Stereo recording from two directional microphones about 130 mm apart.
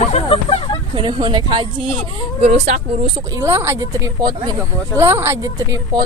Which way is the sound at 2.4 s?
60° right (ahead or behind).